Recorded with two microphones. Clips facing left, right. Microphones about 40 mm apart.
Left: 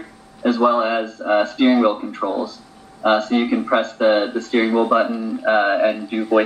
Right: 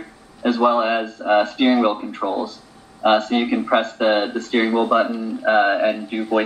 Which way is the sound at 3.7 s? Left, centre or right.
Centre.